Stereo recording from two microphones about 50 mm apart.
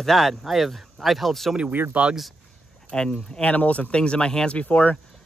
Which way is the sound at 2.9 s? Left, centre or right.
Centre.